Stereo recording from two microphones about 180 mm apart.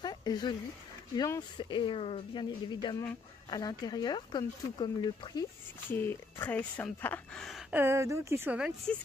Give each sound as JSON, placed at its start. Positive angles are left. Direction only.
{"t": 0.0, "sound": "a sound", "side_deg": 25}
{"t": 1.1, "sound": "speech", "side_deg": 20}
{"t": 5.9, "sound": "speech", "side_deg": 10}
{"t": 7.7, "sound": "speech", "side_deg": -15}